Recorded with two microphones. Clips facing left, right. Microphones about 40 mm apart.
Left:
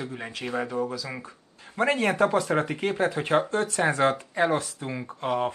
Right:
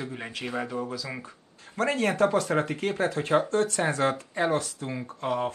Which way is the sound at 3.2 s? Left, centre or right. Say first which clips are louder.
Even; left.